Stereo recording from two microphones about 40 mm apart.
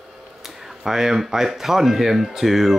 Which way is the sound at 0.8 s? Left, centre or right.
Centre.